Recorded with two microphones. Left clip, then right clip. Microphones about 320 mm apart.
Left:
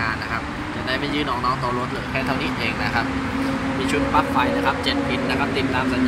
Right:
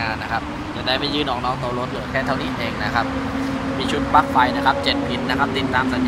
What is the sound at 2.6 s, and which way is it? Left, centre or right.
Speech, centre.